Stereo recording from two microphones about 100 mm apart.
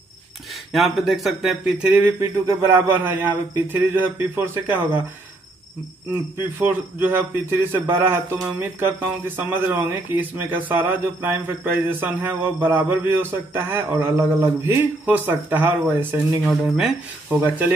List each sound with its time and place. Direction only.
0.7 s speech: centre (ahead or behind)
1.9 s a man's voice: 20° right (ahead or behind)
6.3 s a man's voice: 20° right (ahead or behind)
16.4 s speech: 5° right (ahead or behind)
17.3 s a man's voice: 20° right (ahead or behind)